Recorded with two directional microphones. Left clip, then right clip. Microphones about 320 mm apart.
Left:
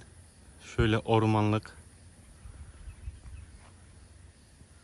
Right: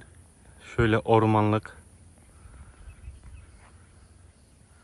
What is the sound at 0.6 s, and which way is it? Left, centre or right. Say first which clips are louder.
Speech: right 5 dB; centre.